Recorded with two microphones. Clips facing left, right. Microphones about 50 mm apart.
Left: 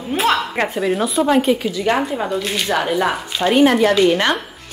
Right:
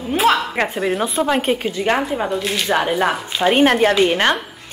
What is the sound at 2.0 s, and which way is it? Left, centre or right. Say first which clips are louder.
Speech: even; centre.